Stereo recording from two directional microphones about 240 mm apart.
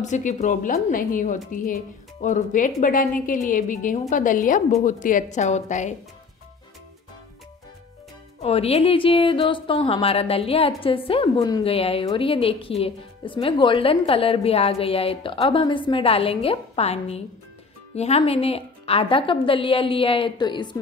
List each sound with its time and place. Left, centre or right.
0.0 s a woman's voice: left
8.4 s a woman's voice: left